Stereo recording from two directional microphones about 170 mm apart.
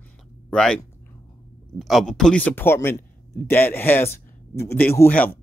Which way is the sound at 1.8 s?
Centre (ahead or behind).